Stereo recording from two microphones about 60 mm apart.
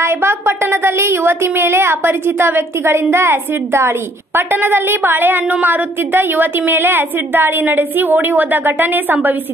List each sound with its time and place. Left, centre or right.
0.0 s a woman's voice: right